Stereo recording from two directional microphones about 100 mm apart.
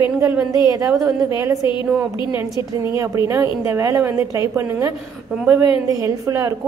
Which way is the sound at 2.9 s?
30° right (ahead or behind).